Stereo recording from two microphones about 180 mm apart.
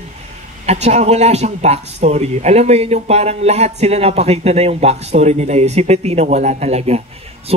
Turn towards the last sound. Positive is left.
turn(degrees=-35)  # may be behind; listen again after turning